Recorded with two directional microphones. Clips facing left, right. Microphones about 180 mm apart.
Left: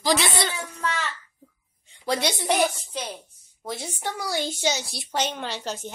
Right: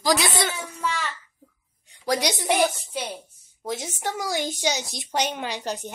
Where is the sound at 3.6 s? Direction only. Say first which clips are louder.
Right 3 dB; 15° right (ahead or behind).